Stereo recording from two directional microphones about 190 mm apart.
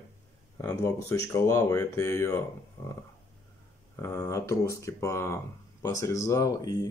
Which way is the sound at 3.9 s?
15° left (ahead or behind).